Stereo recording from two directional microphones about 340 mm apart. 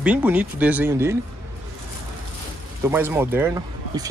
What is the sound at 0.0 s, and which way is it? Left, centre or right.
Speech, centre.